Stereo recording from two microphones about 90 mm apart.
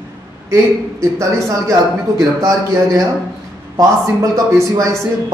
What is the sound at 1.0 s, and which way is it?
A man's voice, 35° right (ahead or behind).